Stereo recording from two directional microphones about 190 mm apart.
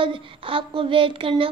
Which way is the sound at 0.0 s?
25° right (ahead or behind).